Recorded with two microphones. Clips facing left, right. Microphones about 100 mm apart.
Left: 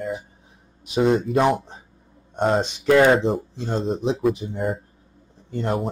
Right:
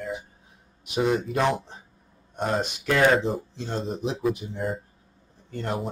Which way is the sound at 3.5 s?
15° left (ahead or behind).